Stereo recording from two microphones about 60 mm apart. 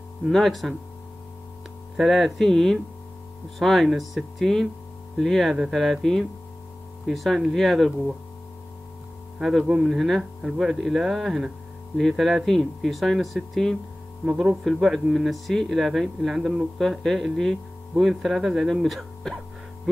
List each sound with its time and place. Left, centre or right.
0.3 s speech: centre
2.0 s speech: centre
9.4 s speech: centre
16.3 s speech: centre
16.7 s speech: centre